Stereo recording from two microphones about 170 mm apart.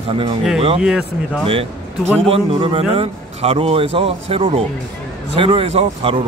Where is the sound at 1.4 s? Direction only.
35° right (ahead or behind).